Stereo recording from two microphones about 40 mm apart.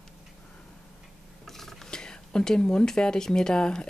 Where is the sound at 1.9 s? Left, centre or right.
Left.